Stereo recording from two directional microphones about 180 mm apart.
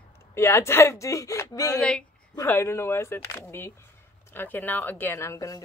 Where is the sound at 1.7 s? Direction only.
5° left (ahead or behind).